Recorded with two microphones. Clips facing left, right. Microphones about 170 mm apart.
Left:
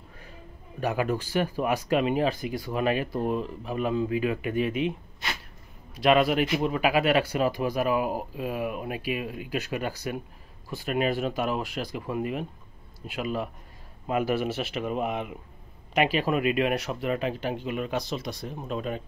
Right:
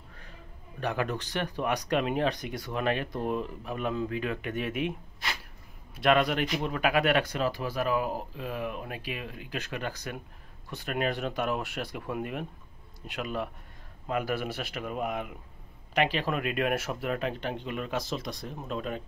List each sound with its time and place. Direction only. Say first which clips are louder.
0.7 s speech: left 4 dB; 10° left (ahead or behind)
5.9 s speech: left 3 dB; 5° left (ahead or behind)
14.0 s speech: left 5 dB; 15° left (ahead or behind)
15.9 s speech: left 4 dB; 10° left (ahead or behind)